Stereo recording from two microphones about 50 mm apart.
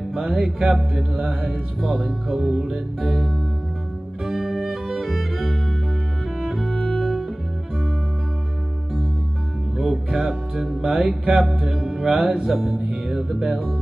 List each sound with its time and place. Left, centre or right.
0.1 s music: centre
1.5 s speech: centre
4.2 s music: centre
9.8 s music: centre